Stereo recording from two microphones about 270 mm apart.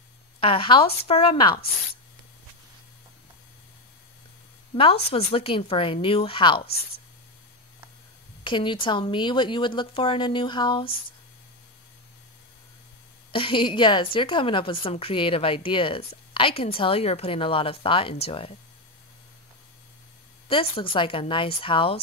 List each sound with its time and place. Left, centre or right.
0.4 s a woman's voice: centre
5.1 s a woman's voice: left
8.5 s speech: centre
13.3 s a woman's voice: centre
20.4 s a woman's voice: centre